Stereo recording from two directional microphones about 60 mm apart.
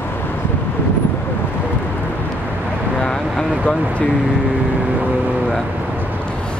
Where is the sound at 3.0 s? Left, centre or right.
Centre.